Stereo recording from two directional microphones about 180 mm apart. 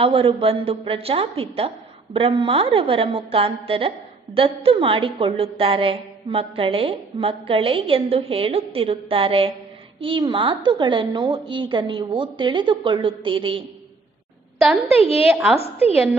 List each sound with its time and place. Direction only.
0.0 s a woman's voice: 30° right (ahead or behind)
14.9 s a woman's voice: 35° left (ahead or behind)